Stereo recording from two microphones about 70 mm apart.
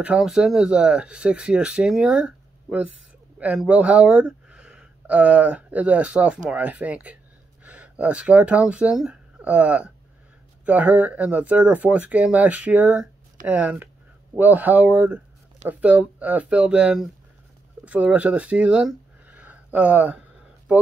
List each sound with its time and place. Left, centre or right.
0.0 s speech: centre